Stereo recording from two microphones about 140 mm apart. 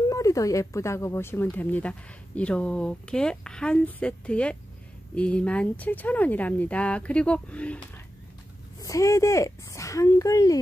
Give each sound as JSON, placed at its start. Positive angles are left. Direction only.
{"t": 0.1, "sound": "speech", "side_deg": 25}
{"t": 8.7, "sound": "speech", "side_deg": 25}